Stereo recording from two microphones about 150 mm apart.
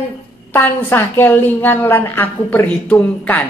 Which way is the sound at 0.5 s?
15° left (ahead or behind).